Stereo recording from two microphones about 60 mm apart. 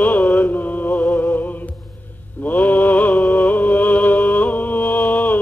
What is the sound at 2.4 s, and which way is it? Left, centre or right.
Mantra, left.